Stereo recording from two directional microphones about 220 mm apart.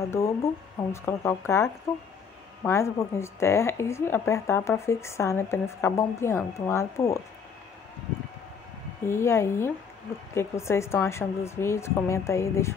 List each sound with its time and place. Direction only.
0.1 s a woman's voice: 10° left (ahead or behind)
9.0 s a woman's voice: 10° left (ahead or behind)